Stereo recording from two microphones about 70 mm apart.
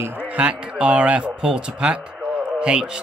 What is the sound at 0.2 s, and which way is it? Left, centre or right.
A man's voice, centre.